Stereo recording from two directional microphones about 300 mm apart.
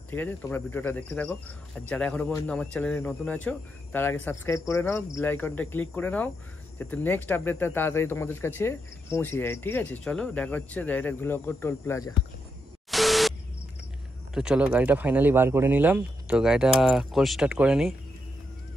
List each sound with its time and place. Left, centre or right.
0.1 s speech: centre
12.9 s a sound: centre
14.3 s speech: centre